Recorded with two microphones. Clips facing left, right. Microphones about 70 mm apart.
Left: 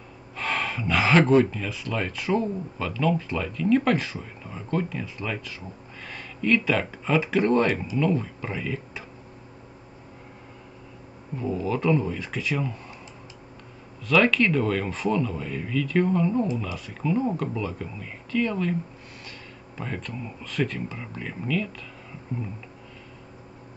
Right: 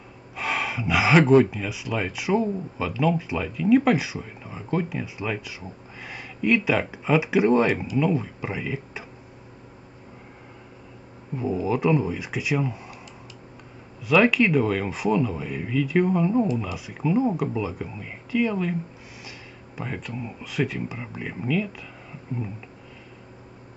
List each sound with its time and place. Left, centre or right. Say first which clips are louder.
0.4 s speech: right 1 dB; centre
11.3 s speech: right 2 dB; centre
14.0 s speech: right 2 dB; centre
19.8 s speech: right 1 dB; centre